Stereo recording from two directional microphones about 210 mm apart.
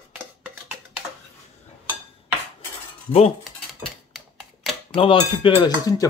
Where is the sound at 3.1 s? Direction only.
30° left (ahead or behind).